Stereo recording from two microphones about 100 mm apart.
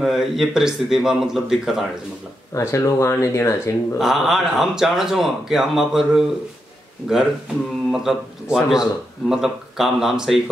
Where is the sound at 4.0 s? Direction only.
5° right (ahead or behind).